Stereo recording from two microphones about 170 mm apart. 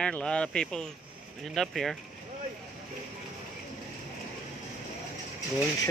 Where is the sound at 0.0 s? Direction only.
5° left (ahead or behind).